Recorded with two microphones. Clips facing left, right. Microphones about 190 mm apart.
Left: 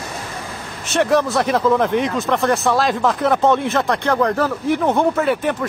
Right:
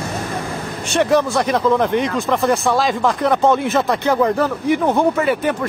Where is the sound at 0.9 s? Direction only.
Centre (ahead or behind).